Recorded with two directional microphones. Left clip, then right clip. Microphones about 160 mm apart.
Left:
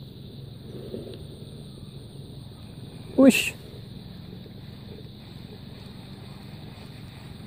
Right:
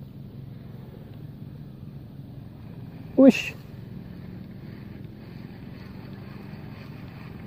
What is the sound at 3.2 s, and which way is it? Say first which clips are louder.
Speech: right 1 dB; 20° left (ahead or behind).